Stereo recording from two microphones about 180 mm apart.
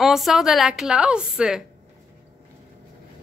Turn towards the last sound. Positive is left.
turn(degrees=-5)  # may be behind; listen again after turning